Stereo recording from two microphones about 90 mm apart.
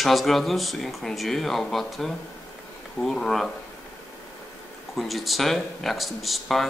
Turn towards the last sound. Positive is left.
turn(degrees=0)  # may be behind; listen again after turning